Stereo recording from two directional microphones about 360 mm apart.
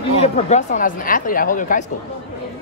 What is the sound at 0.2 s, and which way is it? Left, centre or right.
Speech, centre.